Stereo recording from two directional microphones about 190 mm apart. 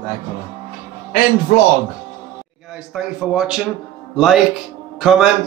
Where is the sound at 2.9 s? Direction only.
5° right (ahead or behind).